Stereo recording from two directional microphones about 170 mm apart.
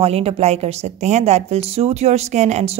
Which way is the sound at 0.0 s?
35° right (ahead or behind).